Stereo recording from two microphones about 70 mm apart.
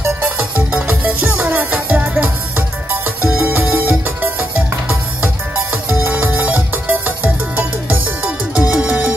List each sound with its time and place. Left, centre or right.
0.2 s music: centre